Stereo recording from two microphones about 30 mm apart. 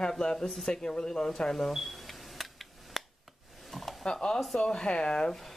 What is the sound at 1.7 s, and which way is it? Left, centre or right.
Camera, centre.